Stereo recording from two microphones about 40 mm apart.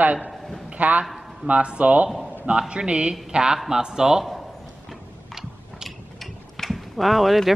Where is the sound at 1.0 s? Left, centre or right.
Centre.